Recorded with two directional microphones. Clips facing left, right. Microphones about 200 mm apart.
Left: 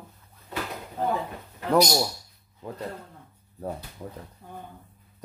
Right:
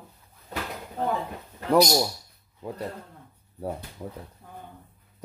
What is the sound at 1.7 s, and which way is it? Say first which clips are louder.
Speech: right 1 dB; 10° right (ahead or behind).